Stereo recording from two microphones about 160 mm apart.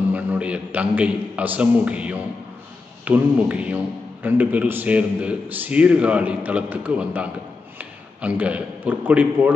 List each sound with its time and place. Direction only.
0.1 s a man's voice: 10° right (ahead or behind)